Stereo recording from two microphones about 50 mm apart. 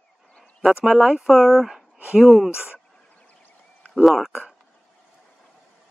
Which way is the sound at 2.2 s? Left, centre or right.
Centre.